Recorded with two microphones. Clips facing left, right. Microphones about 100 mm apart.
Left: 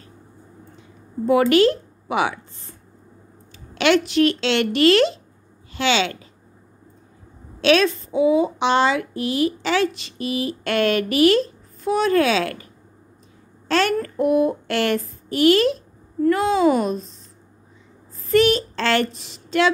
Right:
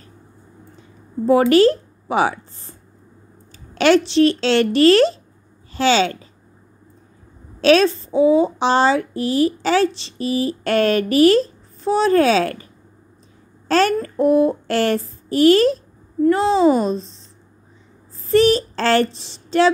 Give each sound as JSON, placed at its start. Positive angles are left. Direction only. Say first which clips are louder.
{"t": 1.5, "sound": "a child's voice", "louder": "right 3 dB", "side_deg": -35}
{"t": 7.6, "sound": "a child's voice", "louder": "right 3 dB", "side_deg": -35}
{"t": 13.7, "sound": "a child's voice", "louder": "right 3 dB", "side_deg": -35}